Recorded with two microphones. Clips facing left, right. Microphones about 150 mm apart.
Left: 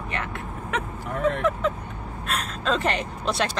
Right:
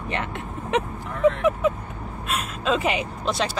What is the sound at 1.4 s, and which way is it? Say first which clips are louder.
Vehicle: right 3 dB; 10° right (ahead or behind).